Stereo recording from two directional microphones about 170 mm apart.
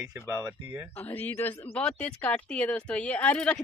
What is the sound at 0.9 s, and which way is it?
Speech, 10° left (ahead or behind).